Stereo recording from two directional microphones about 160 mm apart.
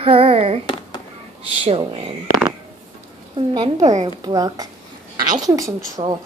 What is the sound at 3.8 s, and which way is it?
Speech, 45° right (ahead or behind).